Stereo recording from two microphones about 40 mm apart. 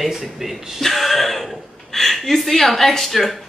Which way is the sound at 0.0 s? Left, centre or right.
Centre.